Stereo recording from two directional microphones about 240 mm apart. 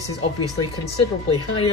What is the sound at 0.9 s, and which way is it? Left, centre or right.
Speech, left.